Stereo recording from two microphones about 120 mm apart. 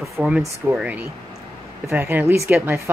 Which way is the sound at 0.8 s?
10° right (ahead or behind).